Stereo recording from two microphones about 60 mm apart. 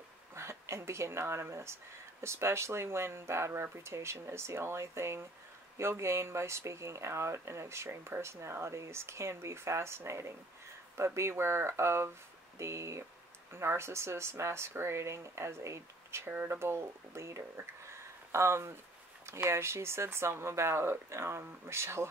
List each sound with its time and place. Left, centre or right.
0.3 s speech: right
17.8 s a sound: right
19.5 s speech: right